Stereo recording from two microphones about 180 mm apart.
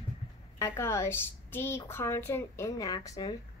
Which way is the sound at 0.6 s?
15° left (ahead or behind).